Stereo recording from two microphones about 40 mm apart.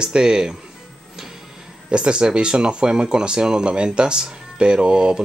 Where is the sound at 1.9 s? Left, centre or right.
Right.